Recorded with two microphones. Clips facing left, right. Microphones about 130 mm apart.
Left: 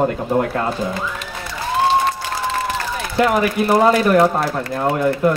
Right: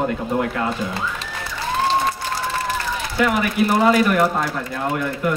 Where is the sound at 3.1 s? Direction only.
40° left (ahead or behind).